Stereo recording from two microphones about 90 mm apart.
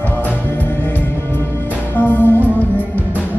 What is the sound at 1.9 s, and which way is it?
Music, 20° left (ahead or behind).